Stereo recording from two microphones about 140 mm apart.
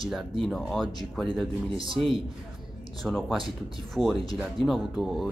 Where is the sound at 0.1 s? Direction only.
5° left (ahead or behind).